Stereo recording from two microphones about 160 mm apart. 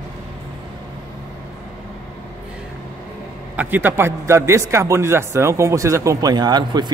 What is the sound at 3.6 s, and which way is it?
A man's voice, 10° right (ahead or behind).